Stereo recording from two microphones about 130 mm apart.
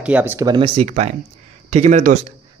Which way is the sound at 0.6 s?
50° right (ahead or behind).